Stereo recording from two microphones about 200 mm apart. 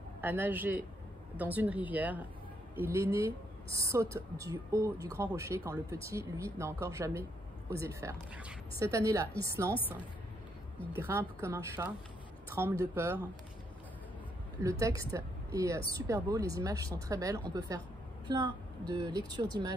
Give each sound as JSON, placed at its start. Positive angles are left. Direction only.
{"t": 0.2, "sound": "speech", "side_deg": -10}
{"t": 11.0, "sound": "speech", "side_deg": -10}
{"t": 14.6, "sound": "speech", "side_deg": -15}